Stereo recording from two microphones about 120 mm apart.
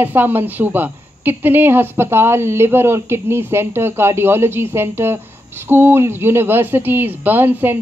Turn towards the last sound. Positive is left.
turn(degrees=-15)  # may be behind; listen again after turning